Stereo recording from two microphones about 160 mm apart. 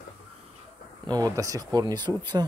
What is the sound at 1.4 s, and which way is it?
Speech, 20° right (ahead or behind).